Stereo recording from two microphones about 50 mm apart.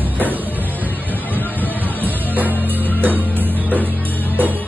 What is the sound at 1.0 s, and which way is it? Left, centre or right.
Music, left.